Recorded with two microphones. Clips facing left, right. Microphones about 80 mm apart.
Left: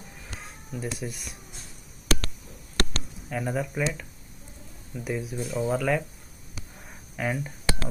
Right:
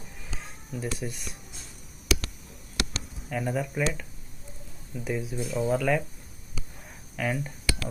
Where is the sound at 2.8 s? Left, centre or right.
Left.